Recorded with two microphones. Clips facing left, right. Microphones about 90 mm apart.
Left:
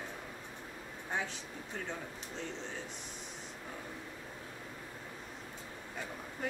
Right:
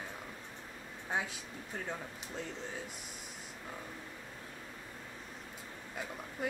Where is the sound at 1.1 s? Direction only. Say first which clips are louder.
Right 1 dB; 10° right (ahead or behind).